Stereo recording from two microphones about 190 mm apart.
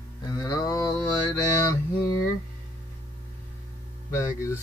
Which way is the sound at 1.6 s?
15° left (ahead or behind).